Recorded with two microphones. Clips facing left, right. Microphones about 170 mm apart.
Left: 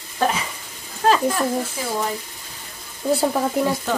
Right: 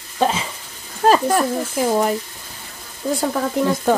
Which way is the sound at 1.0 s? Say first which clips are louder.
Right 3 dB; 45° right (ahead or behind).